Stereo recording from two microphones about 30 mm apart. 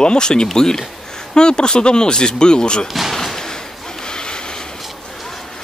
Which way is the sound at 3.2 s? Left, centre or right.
Centre.